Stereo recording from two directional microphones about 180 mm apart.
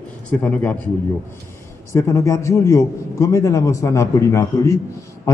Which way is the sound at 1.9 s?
15° left (ahead or behind).